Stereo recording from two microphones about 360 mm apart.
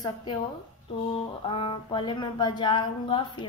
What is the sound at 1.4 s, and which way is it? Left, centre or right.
A woman's voice, centre.